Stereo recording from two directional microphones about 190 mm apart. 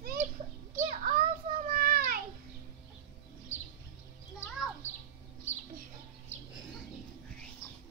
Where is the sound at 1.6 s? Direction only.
50° right (ahead or behind).